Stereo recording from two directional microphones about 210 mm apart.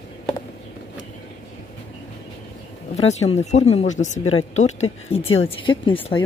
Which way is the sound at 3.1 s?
30° left (ahead or behind).